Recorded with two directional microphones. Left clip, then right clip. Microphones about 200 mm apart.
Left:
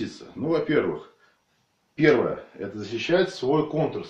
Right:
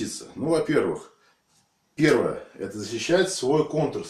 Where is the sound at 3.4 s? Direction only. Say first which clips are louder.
Right 1 dB; 15° right (ahead or behind).